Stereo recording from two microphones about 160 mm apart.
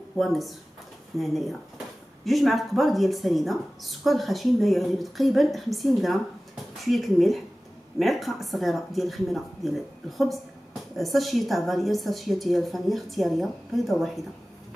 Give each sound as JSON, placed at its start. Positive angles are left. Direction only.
{"t": 0.2, "sound": "speech", "side_deg": 0}